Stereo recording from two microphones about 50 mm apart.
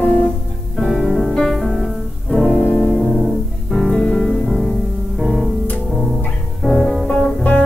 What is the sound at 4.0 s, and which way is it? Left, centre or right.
Music, left.